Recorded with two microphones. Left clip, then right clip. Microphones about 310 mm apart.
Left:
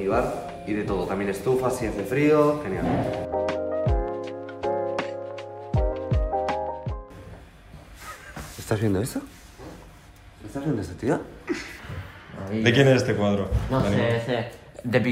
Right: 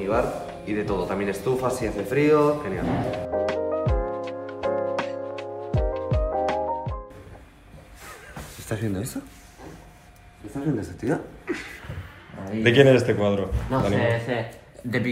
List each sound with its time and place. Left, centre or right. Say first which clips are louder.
0.0 s a sound: even; centre
8.6 s speech: left 5 dB; centre
11.1 s a man's voice: left 1 dB; centre